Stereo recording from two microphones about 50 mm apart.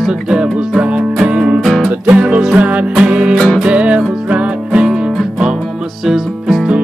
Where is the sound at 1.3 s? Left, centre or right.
Right.